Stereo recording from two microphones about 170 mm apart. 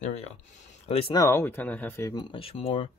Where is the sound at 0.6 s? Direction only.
40° left (ahead or behind).